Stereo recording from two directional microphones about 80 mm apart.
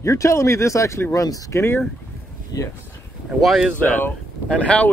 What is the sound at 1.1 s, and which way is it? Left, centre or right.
Speech, left.